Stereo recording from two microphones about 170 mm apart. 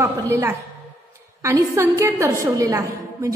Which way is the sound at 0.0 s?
15° right (ahead or behind).